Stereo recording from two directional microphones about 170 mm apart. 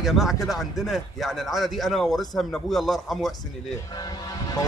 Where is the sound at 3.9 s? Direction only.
25° left (ahead or behind).